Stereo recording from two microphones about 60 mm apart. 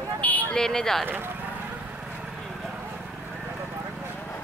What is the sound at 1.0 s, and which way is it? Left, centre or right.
Speech, right.